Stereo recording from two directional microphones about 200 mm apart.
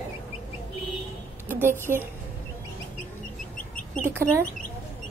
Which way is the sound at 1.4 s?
10° right (ahead or behind).